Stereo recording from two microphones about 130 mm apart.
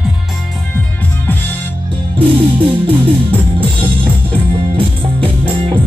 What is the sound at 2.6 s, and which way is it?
Music, 45° right (ahead or behind).